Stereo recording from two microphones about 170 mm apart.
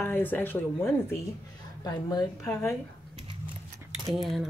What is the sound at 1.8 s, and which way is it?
Speech, 25° left (ahead or behind).